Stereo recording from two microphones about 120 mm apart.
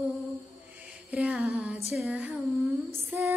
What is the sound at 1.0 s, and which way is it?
Female singing, 10° right (ahead or behind).